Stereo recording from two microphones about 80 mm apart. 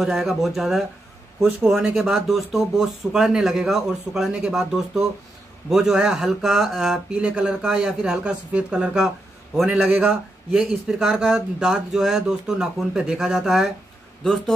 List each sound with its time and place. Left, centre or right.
0.0 s speech: centre
1.7 s speech: centre
2.0 s speech: centre
9.7 s a man's voice: centre
10.5 s speech: centre